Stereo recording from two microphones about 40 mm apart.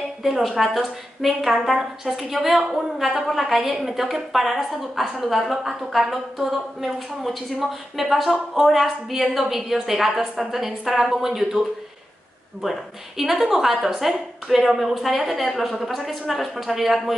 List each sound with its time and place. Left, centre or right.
0.2 s a woman's voice: centre
13.2 s a woman's voice: centre
14.0 s a woman's voice: centre